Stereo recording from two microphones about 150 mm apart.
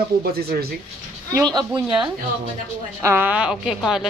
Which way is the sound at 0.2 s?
90° right.